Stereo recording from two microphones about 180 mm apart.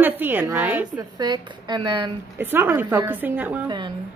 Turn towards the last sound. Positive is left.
turn(degrees=-10)  # may be behind; listen again after turning